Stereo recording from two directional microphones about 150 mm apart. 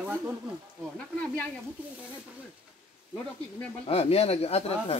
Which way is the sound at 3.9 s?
40° left (ahead or behind).